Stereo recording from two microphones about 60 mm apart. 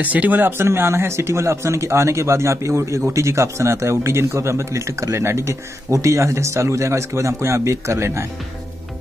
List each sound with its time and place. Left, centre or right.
0.0 s a man's voice: right
5.9 s a man's voice: right